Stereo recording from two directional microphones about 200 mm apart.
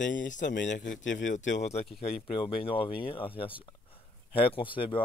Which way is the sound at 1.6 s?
35° left (ahead or behind).